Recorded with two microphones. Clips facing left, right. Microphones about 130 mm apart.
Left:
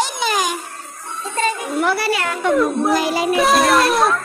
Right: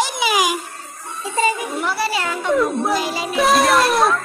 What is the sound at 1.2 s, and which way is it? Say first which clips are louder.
Music: right 2 dB; 10° right (ahead or behind).